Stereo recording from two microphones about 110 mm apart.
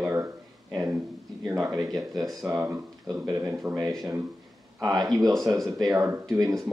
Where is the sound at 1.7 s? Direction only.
35° right (ahead or behind).